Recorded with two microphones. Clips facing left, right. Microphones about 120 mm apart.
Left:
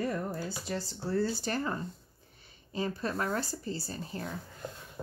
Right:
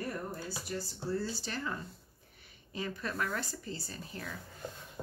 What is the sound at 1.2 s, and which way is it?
Speech, 50° left (ahead or behind).